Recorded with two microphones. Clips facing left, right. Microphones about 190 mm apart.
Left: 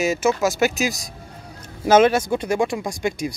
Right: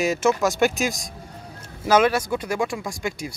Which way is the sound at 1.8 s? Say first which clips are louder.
Left 4 dB; 25° left (ahead or behind).